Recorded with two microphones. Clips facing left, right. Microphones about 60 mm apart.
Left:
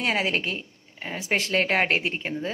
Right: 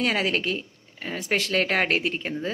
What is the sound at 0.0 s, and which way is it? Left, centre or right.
A woman's voice, centre.